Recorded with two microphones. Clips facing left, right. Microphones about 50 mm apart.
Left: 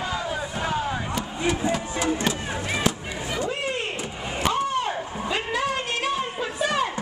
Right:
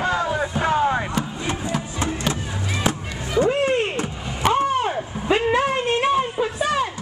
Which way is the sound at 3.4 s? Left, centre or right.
Right.